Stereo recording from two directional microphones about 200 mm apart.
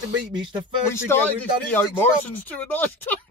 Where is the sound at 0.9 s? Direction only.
10° left (ahead or behind).